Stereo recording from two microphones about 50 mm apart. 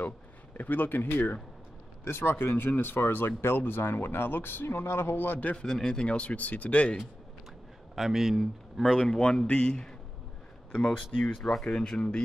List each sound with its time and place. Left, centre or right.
0.6 s speech: left
2.0 s speech: left
5.7 s speech: centre
6.0 s speech: left
7.9 s speech: centre
8.8 s speech: centre